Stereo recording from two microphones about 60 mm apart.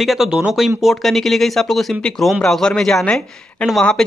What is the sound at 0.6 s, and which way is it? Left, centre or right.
Speech, centre.